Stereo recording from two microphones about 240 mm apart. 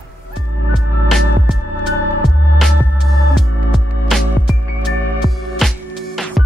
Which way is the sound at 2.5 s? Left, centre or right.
Centre.